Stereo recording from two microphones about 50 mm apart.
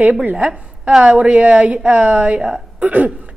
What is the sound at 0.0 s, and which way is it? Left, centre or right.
A woman's voice, right.